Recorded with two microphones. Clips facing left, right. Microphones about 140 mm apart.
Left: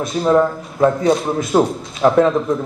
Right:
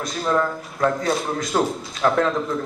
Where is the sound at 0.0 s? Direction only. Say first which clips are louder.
Left 7 dB; 25° left (ahead or behind).